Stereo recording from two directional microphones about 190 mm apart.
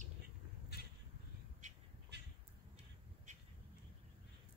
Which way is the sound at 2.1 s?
65° right (ahead or behind).